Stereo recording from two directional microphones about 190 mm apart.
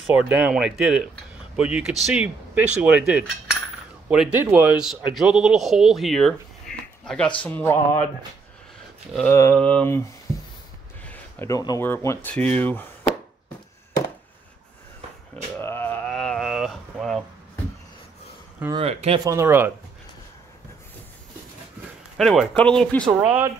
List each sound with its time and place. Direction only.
0.0 s speech: 5° right (ahead or behind)
7.4 s speech: 10° left (ahead or behind)
9.3 s speech: 10° left (ahead or behind)
10.3 s a sound: 5° right (ahead or behind)
11.1 s speech: 15° left (ahead or behind)
15.5 s a sound: 10° left (ahead or behind)
18.7 s speech: 30° right (ahead or behind)
19.2 s speech: 15° right (ahead or behind)
22.1 s speech: centre (ahead or behind)
23.2 s speech: 10° right (ahead or behind)